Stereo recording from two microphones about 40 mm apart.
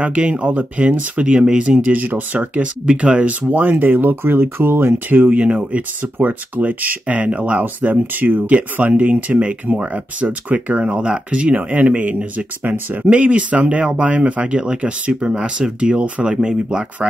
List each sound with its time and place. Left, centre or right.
0.0 s speech: right
1.4 s speech: right
1.8 s speech: right
5.1 s speech: right
5.4 s speech: right
6.1 s speech: right
11.5 s speech: right
12.6 s speech: right
13.0 s speech: right